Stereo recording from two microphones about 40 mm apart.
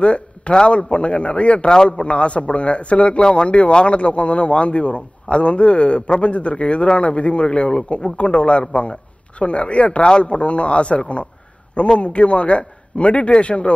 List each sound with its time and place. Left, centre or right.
0.0 s a man's voice: left